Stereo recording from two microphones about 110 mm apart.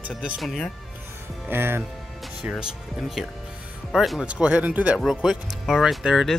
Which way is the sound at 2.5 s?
Centre (ahead or behind).